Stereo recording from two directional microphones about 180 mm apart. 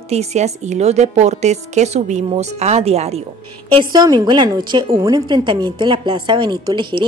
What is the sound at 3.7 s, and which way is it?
A woman's voice, 20° right (ahead or behind).